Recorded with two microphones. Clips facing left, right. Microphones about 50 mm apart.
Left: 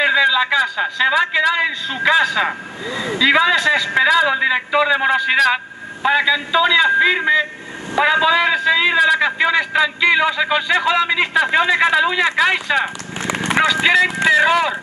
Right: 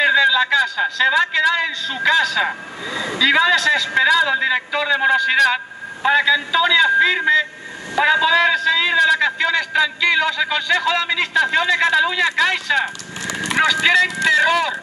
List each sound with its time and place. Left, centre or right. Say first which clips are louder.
0.0 s a man's voice: even; centre
13.3 s speech: left 3 dB; left
13.9 s a man's voice: left 2 dB; centre